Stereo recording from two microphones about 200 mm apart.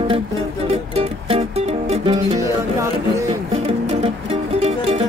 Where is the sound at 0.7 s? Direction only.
30° right (ahead or behind).